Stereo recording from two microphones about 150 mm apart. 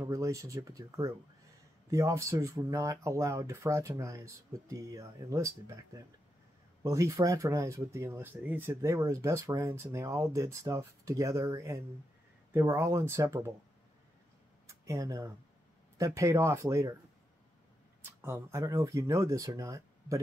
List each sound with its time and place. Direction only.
0.0 s speech: 20° right (ahead or behind)
14.7 s speech: 20° right (ahead or behind)
18.2 s speech: 15° right (ahead or behind)